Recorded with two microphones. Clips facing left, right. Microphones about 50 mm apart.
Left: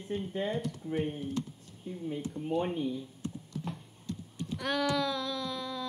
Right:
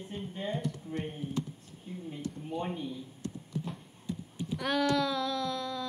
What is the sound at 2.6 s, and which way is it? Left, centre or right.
Speech, left.